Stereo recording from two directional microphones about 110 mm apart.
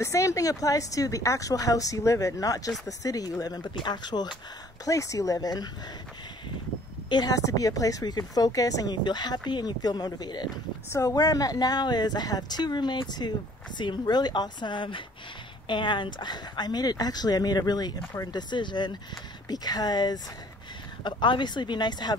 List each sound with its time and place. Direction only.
0.0 s speech: 30° left (ahead or behind)
4.8 s speech: 30° left (ahead or behind)
7.1 s speech: 40° left (ahead or behind)